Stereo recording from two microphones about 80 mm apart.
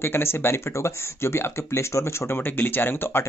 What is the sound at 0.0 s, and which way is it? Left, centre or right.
Speech, left.